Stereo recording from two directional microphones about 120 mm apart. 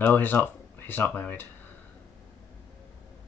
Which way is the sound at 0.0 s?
15° left (ahead or behind).